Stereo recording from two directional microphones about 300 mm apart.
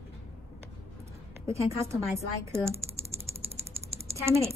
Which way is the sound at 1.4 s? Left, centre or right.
Centre.